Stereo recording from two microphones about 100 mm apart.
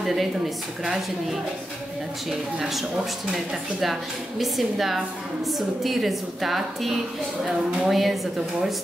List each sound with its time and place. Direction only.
0.0 s a woman's voice: centre (ahead or behind)
3.8 s a woman's voice: centre (ahead or behind)